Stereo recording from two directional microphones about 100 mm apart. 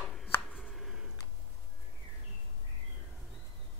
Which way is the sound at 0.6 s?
5° right (ahead or behind).